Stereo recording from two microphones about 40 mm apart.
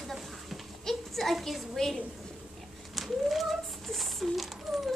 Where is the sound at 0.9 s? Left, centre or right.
Centre.